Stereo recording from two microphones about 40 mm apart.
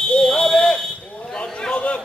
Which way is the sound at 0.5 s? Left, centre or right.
Centre.